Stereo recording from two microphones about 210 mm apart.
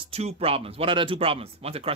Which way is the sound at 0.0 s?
30° right (ahead or behind).